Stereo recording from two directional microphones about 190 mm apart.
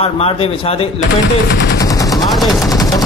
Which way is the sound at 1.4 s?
55° left (ahead or behind).